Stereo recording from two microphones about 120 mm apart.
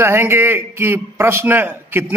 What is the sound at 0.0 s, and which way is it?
A man's voice, 20° right (ahead or behind).